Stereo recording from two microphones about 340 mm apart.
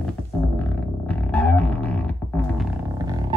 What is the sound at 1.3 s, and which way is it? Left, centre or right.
Music, centre.